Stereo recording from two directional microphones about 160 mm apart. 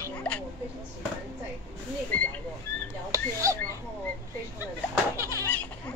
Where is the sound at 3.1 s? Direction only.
20° right (ahead or behind).